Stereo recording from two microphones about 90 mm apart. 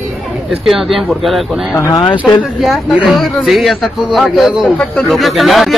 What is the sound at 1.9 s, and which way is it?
Speech, 45° left (ahead or behind).